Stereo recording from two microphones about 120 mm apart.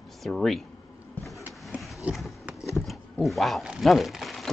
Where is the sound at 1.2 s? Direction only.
15° left (ahead or behind).